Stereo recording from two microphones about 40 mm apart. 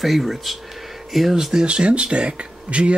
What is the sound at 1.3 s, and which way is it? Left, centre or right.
Speech, centre.